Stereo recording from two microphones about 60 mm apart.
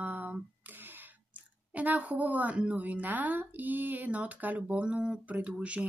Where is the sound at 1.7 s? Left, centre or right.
Right.